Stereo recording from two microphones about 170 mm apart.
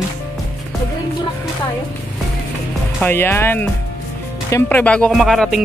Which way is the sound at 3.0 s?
15° left (ahead or behind).